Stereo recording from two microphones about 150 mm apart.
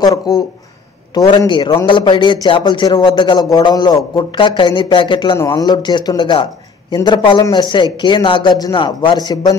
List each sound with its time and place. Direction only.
0.0 s a man's voice: 25° left (ahead or behind)